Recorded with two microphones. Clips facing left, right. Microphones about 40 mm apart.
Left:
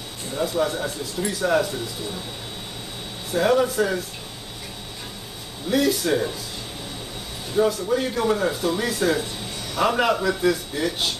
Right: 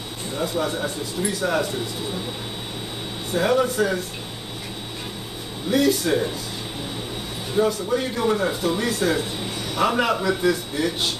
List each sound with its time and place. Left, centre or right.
0.4 s speech: centre
3.3 s speech: centre
5.7 s speech: centre
7.5 s speech: centre